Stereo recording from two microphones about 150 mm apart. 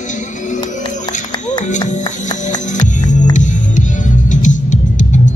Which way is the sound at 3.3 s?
55° left (ahead or behind).